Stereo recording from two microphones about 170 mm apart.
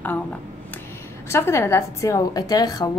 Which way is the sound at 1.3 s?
15° left (ahead or behind).